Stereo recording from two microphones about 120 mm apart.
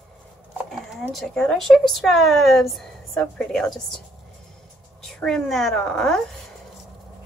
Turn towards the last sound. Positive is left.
turn(degrees=5)  # may be behind; listen again after turning